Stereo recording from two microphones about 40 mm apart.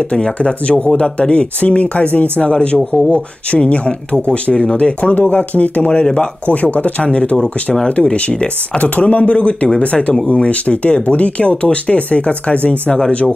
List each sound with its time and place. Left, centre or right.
0.1 s speech: left